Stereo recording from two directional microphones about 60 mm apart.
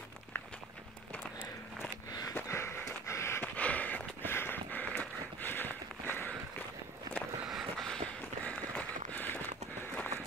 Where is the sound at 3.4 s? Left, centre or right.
Left.